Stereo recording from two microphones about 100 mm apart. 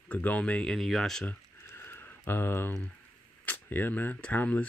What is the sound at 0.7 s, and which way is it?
Speech, centre (ahead or behind).